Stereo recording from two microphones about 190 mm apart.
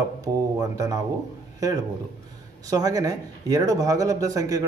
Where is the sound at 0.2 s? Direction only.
20° right (ahead or behind).